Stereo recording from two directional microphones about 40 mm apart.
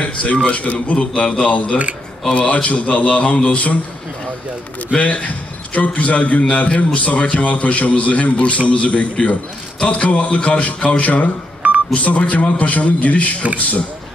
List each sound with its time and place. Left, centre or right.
0.0 s a sound: left
0.5 s a man's voice: left
1.5 s a man's voice: left
4.9 s a man's voice: left